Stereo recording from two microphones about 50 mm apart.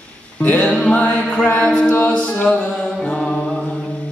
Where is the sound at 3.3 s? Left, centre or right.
Centre.